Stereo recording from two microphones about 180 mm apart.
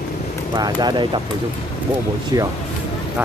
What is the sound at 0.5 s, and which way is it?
Speech, 20° right (ahead or behind).